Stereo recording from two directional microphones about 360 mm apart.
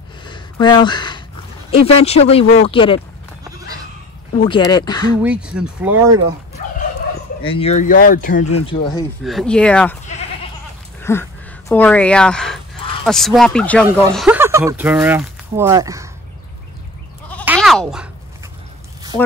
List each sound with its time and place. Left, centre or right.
0.2 s a sound: centre
1.7 s speech: centre
4.5 s speech: centre
5.2 s speech: centre
7.4 s speech: centre
8.6 s speech: centre
9.2 s speech: centre
11.0 s a sound: centre
11.7 s speech: centre
17.3 s goat: centre